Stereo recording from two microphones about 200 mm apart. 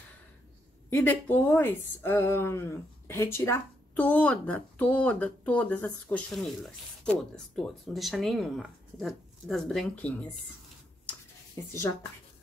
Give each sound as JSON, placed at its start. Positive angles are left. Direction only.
{"t": 0.8, "sound": "speech", "side_deg": 10}